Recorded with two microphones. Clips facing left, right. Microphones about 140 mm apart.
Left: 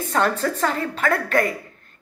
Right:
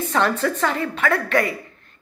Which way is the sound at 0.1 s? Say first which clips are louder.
Even; 40° left (ahead or behind).